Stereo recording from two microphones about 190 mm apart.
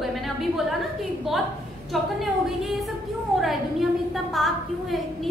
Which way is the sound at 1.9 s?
Centre (ahead or behind).